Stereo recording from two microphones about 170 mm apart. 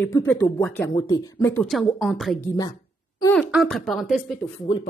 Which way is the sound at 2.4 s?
20° left (ahead or behind).